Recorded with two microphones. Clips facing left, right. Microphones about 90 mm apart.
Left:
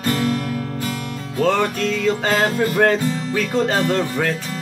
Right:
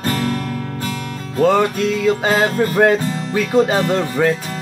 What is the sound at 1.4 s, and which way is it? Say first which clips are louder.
Music: right 4 dB; 15° right (ahead or behind).